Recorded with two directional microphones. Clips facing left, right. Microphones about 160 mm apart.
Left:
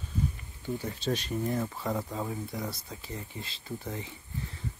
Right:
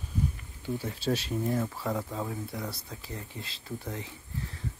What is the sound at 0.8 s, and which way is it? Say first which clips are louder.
Speech: right 2 dB; 5° right (ahead or behind).